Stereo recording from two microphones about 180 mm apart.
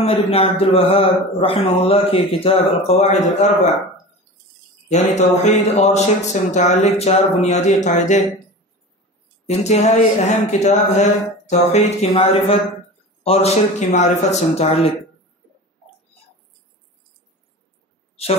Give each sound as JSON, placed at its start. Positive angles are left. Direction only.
{"t": 0.0, "sound": "speech", "side_deg": 35}
{"t": 4.8, "sound": "speech", "side_deg": 40}
{"t": 9.5, "sound": "speech", "side_deg": 40}